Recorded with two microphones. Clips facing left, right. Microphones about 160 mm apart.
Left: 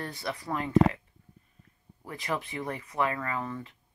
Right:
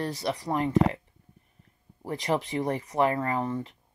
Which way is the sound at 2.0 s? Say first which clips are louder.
Right 6 dB; 35° right (ahead or behind).